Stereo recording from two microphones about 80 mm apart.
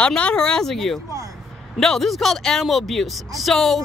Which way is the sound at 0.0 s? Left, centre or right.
Centre.